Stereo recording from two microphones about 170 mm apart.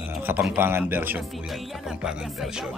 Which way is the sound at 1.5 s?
5° right (ahead or behind).